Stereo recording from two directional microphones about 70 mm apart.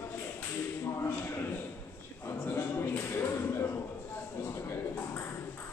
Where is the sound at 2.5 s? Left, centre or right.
Left.